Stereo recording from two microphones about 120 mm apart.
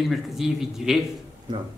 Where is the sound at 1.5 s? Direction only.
40° right (ahead or behind).